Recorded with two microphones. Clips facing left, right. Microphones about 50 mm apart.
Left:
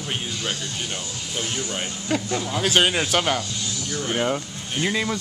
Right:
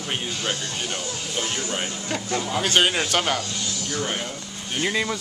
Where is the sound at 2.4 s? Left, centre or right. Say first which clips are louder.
Right 1 dB; centre.